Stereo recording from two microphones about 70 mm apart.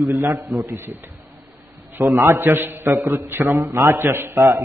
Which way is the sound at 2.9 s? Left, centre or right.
Right.